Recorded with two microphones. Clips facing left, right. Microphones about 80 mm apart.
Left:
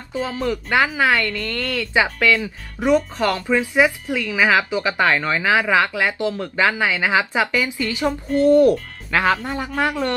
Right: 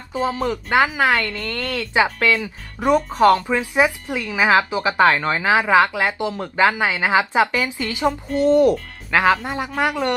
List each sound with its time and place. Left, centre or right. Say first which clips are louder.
0.1 s speech: right 2 dB; centre